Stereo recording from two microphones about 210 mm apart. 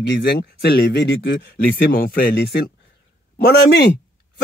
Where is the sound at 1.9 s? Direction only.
45° left (ahead or behind).